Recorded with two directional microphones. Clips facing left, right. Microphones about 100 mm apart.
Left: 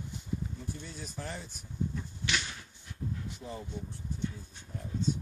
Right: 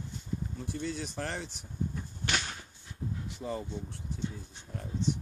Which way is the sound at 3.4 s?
90° right.